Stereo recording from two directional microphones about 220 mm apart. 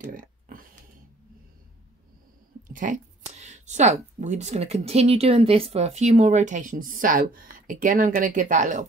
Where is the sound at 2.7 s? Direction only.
35° right (ahead or behind).